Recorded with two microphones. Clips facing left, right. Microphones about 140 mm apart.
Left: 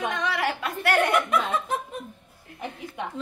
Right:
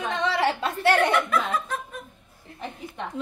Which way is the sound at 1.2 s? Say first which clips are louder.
Left 1 dB; 20° left (ahead or behind).